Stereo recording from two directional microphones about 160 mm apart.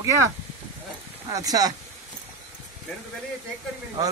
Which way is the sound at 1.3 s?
20° right (ahead or behind).